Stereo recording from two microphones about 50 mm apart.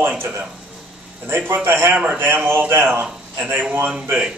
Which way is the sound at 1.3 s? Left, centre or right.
Right.